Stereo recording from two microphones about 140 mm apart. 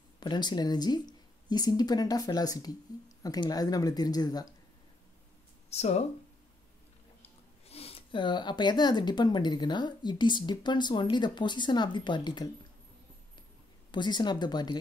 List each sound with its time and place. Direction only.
0.2 s speech: 30° left (ahead or behind)
5.7 s speech: 50° left (ahead or behind)
7.2 s speech: 45° left (ahead or behind)
13.9 s speech: 30° left (ahead or behind)